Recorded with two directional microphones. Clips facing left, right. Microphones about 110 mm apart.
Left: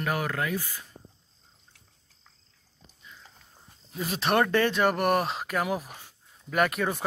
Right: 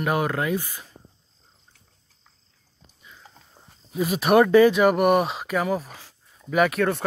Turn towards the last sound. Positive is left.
turn(degrees=0)  # may be behind; listen again after turning